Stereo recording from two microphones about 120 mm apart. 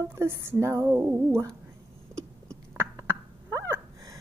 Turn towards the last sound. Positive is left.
turn(degrees=-25)  # may be behind; listen again after turning